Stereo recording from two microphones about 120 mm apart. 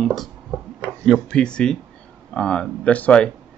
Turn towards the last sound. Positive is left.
turn(degrees=10)  # may be behind; listen again after turning